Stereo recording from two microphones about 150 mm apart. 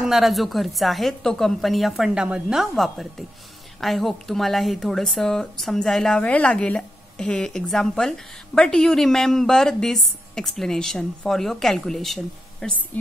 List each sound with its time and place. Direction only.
0.0 s speech: centre (ahead or behind)